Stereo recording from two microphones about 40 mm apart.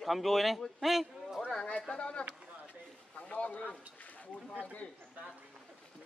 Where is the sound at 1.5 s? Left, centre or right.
Left.